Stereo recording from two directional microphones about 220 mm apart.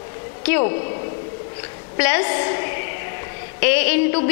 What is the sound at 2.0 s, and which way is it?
A woman's voice, 10° left (ahead or behind).